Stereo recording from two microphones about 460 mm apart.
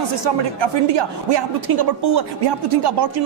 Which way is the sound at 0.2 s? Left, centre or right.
Right.